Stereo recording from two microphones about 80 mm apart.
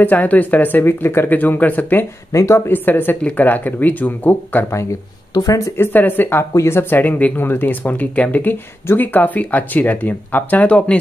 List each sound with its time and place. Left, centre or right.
0.0 s speech: left
2.3 s speech: left
2.7 s speech: left
5.3 s speech: left
5.8 s speech: left